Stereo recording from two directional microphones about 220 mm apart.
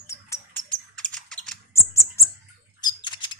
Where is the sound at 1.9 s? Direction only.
15° left (ahead or behind).